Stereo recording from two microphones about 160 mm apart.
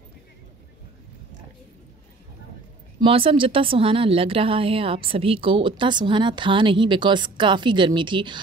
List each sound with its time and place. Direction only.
3.0 s speech: 35° right (ahead or behind)